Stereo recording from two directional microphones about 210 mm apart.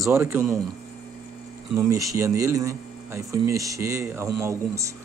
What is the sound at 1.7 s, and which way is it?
Speech, 15° right (ahead or behind).